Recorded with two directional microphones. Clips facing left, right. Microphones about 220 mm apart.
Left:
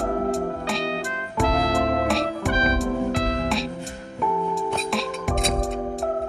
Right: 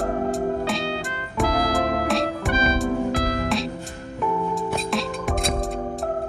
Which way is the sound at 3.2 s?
25° left (ahead or behind).